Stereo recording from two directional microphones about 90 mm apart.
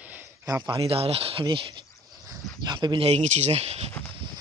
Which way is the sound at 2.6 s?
55° right (ahead or behind).